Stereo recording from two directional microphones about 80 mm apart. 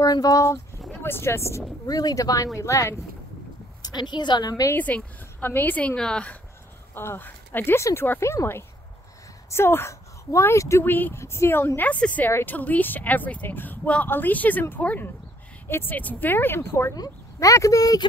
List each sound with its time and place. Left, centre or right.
0.0 s speech: left
1.0 s speech: left
1.9 s speech: left
3.8 s a woman's voice: left
4.7 s a woman's voice: left
6.9 s speech: left
10.9 s speech: left
16.9 s speech: left